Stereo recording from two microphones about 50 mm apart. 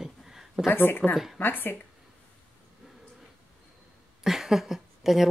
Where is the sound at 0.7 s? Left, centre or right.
Left.